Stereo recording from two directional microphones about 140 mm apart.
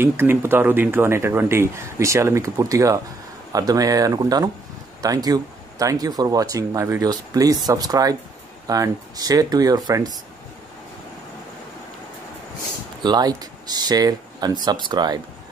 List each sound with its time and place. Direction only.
0.0 s speech: 15° right (ahead or behind)
13.0 s speech: 30° right (ahead or behind)